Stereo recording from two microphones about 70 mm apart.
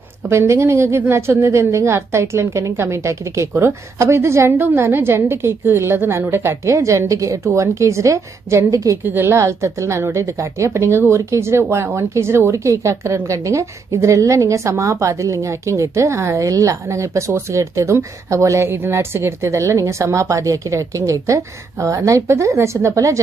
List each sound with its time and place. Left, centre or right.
0.3 s a woman's voice: right
9.0 s a woman's voice: right
9.4 s a woman's voice: right